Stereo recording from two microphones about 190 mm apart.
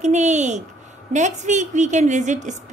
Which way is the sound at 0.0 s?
40° right (ahead or behind).